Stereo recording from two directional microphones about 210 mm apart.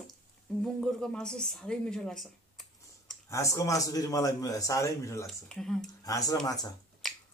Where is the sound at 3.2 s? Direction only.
15° left (ahead or behind).